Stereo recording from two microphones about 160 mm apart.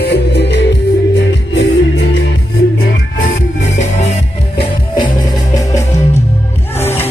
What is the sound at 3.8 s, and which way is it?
Music, 45° left (ahead or behind).